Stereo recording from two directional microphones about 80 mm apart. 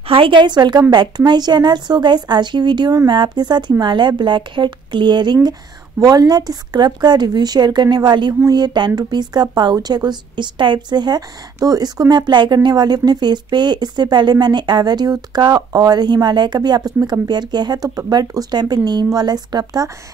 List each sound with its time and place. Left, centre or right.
0.2 s a woman's voice: right
3.8 s a woman's voice: right
17.8 s speech: right